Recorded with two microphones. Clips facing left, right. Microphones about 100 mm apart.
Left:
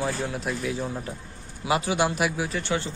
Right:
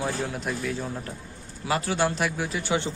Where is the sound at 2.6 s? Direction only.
15° right (ahead or behind).